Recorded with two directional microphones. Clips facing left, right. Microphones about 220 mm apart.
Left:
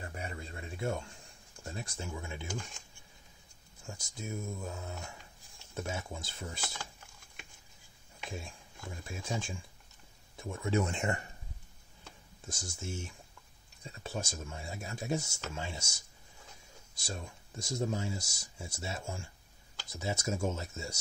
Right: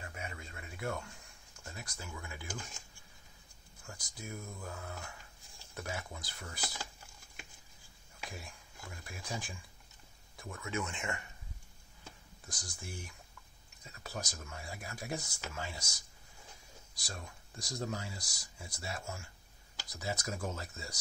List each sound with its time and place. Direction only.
0.0 s a sound: 35° left (ahead or behind)
1.6 s speech: 30° left (ahead or behind)
3.8 s speech: 25° left (ahead or behind)
8.3 s speech: 25° left (ahead or behind)
12.4 s speech: 25° left (ahead or behind)
17.0 s speech: 25° left (ahead or behind)